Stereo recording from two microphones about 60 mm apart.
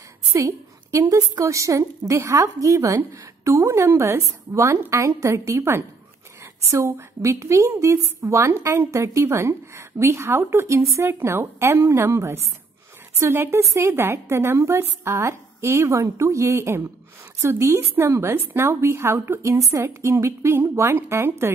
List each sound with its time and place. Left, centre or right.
0.3 s a woman's voice: right
11.1 s a woman's voice: right